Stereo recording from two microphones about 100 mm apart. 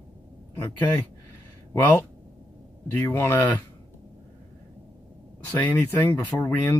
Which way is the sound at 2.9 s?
20° left (ahead or behind).